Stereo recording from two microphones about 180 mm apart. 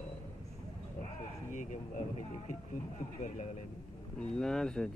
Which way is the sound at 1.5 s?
45° left (ahead or behind).